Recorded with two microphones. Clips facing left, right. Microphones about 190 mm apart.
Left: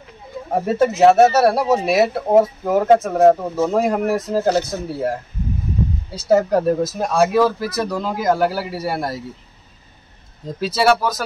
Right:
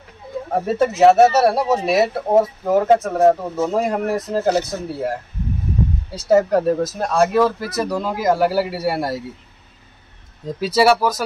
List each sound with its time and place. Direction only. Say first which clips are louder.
0.7 s speech: even; centre (ahead or behind)
6.2 s speech: even; centre (ahead or behind)
10.6 s speech: right 2 dB; 5° right (ahead or behind)